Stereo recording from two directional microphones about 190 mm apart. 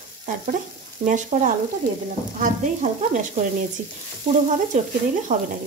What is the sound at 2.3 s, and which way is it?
Sizzle, 40° right (ahead or behind).